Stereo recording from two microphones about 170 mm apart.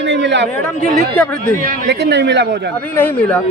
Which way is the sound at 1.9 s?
80° right.